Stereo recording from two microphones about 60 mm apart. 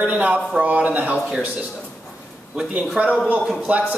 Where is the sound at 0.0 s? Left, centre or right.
Right.